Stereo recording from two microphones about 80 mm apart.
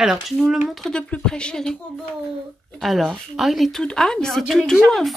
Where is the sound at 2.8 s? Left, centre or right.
Centre.